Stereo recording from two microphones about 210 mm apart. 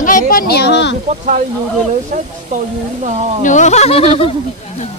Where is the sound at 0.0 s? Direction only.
40° left (ahead or behind).